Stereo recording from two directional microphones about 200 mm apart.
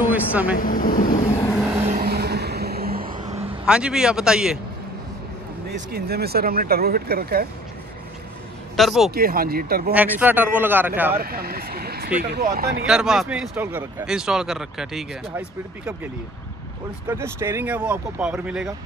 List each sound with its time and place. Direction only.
0.1 s speech: 10° right (ahead or behind)
0.6 s speech: 45° left (ahead or behind)
1.9 s vehicle: 50° right (ahead or behind)
3.6 s speech: 5° right (ahead or behind)
5.7 s speech: 50° right (ahead or behind)
8.7 s a man's voice: centre (ahead or behind)
9.1 s speech: 45° right (ahead or behind)
9.9 s speech: 10° right (ahead or behind)
11.1 s speech: 50° right (ahead or behind)
12.8 s speech: 5° right (ahead or behind)
17.1 s speech: 10° right (ahead or behind)